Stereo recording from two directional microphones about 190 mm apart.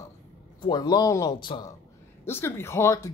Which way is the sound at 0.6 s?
20° left (ahead or behind).